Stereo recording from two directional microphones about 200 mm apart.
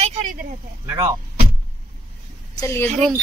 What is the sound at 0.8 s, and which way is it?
Speech, 15° right (ahead or behind).